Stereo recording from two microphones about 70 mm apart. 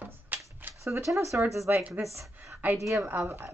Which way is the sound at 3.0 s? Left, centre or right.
Right.